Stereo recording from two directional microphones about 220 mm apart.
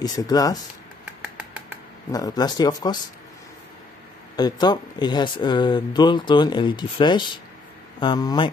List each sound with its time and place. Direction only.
0.0 s speech: 15° left (ahead or behind)
2.1 s speech: 15° left (ahead or behind)
4.4 s speech: 20° left (ahead or behind)